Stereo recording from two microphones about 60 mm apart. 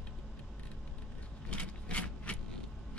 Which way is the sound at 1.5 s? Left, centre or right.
Centre.